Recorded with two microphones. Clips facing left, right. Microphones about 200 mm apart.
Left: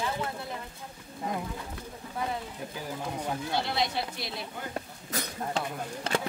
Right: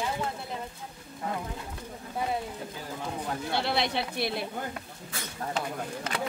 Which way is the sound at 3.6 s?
65° right (ahead or behind).